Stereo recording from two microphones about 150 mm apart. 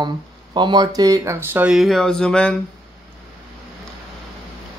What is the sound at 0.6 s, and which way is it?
Speech, 30° right (ahead or behind).